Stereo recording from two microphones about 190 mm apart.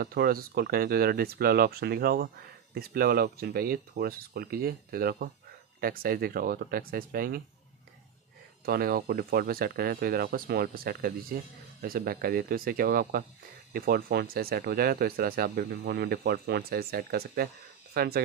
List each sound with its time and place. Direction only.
0.0 s speech: 50° right (ahead or behind)
8.6 s speech: 50° right (ahead or behind)